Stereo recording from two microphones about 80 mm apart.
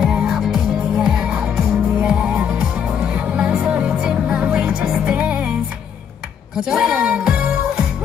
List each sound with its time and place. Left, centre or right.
0.0 s music: centre
5.1 s music: centre
6.5 s music: centre